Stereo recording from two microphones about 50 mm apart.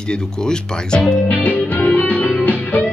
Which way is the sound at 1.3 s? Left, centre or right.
Left.